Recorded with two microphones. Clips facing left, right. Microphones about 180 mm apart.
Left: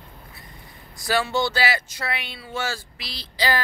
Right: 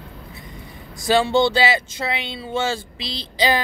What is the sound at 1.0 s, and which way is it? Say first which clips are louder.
Speech: right 6 dB; 25° right (ahead or behind).